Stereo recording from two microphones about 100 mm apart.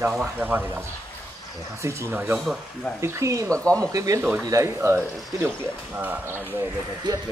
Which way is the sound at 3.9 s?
35° right (ahead or behind).